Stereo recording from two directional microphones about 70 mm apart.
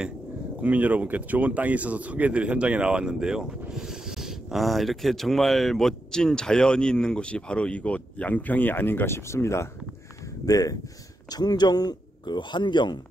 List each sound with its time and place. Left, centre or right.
0.6 s speech: right; by 9.7 s left
10.2 s speech: left
11.2 s a man's voice: left